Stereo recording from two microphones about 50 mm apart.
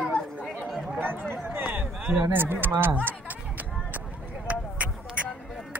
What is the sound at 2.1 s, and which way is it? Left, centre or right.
Speech, right.